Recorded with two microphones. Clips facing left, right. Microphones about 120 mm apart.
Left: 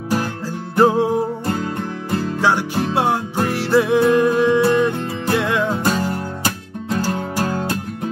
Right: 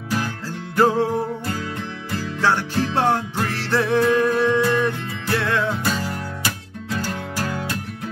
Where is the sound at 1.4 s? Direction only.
40° left (ahead or behind).